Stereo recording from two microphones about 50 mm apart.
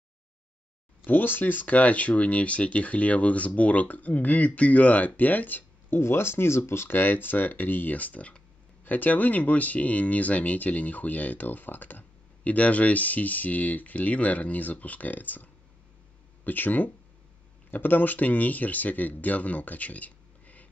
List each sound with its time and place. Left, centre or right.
1.0 s speech: left
5.9 s speech: left